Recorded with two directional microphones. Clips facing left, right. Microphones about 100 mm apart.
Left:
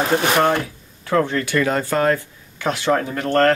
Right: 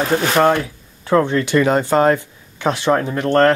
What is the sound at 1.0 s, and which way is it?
Speech, 25° right (ahead or behind).